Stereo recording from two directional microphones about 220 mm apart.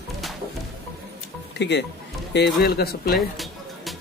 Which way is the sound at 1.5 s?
50° left (ahead or behind).